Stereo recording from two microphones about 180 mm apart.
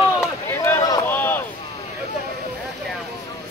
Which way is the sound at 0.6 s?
15° left (ahead or behind).